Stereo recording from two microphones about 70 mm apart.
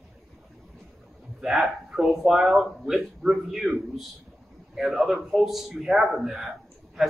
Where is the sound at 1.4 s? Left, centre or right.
Centre.